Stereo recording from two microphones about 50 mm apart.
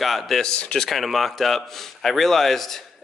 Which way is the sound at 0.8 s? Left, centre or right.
Centre.